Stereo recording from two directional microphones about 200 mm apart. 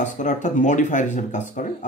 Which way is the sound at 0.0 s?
40° left (ahead or behind).